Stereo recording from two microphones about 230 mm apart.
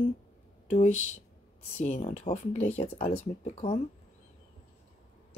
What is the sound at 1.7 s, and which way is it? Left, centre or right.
Speech, left.